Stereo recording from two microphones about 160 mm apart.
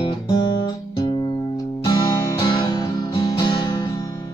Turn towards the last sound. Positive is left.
turn(degrees=20)  # may be behind; listen again after turning